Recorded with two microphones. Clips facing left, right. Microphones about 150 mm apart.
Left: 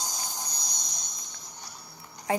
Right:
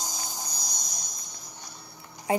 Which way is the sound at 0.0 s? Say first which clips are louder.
Even; 45° right (ahead or behind).